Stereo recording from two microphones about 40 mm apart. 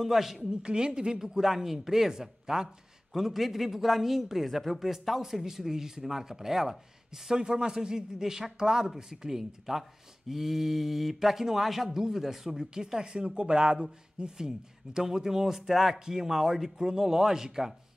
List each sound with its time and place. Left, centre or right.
0.0 s a man's voice: centre
0.5 s a man's voice: right
7.2 s a man's voice: centre